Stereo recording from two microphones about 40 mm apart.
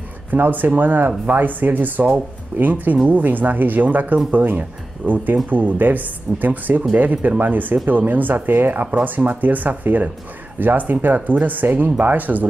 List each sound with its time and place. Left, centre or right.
0.3 s speech: right
7.2 s speech: right